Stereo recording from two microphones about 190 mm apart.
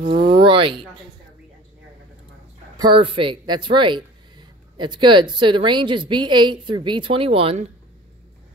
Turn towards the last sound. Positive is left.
turn(degrees=-30)  # may be behind; listen again after turning